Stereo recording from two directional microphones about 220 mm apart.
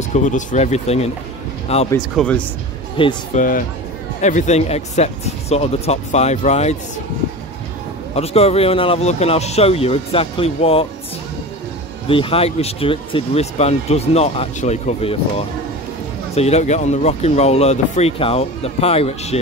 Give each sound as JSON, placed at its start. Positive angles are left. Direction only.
{"t": 0.1, "sound": "speech", "side_deg": 35}
{"t": 2.1, "sound": "speech", "side_deg": 5}
{"t": 3.0, "sound": "speech", "side_deg": 25}
{"t": 3.3, "sound": "speech", "side_deg": 40}
{"t": 8.1, "sound": "speech", "side_deg": 30}
{"t": 12.1, "sound": "speech", "side_deg": 25}